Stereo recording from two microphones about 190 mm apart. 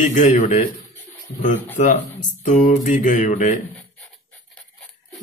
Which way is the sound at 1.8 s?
40° left (ahead or behind).